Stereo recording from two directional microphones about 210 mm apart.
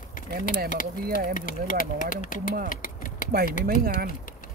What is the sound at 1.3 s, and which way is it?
Speech, 40° left (ahead or behind).